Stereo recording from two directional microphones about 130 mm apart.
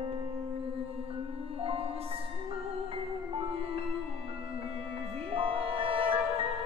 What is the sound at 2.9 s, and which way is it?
Music, 45° right (ahead or behind).